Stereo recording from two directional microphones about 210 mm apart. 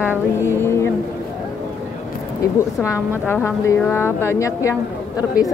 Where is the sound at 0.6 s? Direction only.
10° left (ahead or behind).